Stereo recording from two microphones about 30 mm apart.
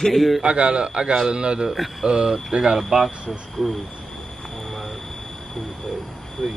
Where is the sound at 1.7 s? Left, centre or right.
Centre.